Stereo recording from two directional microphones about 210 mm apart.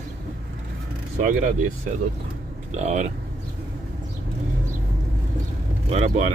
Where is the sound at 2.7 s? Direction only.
35° right (ahead or behind).